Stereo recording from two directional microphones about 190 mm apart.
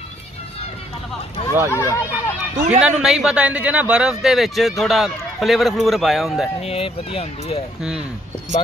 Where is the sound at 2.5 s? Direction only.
40° right (ahead or behind).